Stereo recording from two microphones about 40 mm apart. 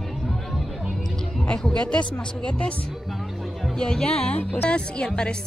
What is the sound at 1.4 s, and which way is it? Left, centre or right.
A woman's voice, left.